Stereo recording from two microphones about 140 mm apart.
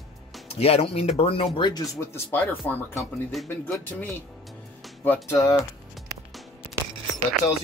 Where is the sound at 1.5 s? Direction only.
30° left (ahead or behind); by 2.9 s 15° left (ahead or behind).